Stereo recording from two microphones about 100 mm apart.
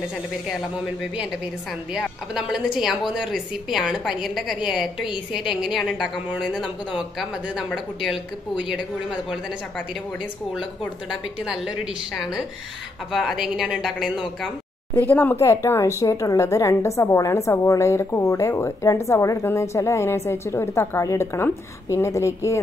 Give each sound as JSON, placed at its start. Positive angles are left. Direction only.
{"t": 2.0, "sound": "a woman's voice", "side_deg": -5}
{"t": 10.8, "sound": "a woman's voice", "side_deg": -5}
{"t": 15.0, "sound": "a woman's voice", "side_deg": 20}